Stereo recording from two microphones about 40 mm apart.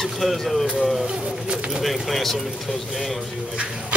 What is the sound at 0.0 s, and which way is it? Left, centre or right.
Speech, centre.